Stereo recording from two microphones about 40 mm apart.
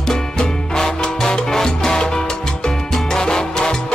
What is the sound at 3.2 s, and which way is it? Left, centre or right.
Salsa music, centre.